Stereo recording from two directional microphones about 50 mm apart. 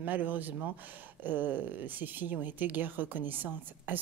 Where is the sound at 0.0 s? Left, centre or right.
Right.